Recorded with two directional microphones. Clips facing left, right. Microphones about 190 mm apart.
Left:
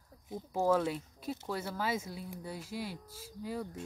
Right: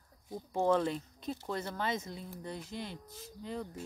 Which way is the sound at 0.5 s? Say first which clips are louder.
Even; 5° left (ahead or behind).